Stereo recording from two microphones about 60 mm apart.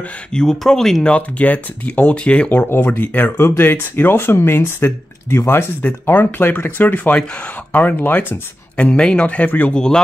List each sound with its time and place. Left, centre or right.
0.3 s speech: centre
1.1 s speech: left
3.3 s speech: left
8.8 s speech: centre
9.8 s speech: centre